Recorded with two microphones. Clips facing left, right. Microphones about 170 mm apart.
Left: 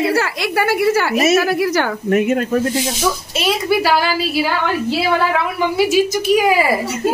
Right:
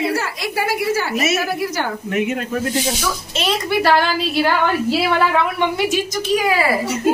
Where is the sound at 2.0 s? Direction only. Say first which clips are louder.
Left 6 dB; 45° left (ahead or behind).